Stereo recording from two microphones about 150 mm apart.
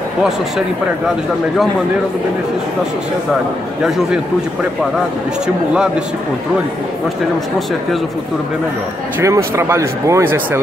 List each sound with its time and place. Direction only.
9.2 s speech: 20° right (ahead or behind)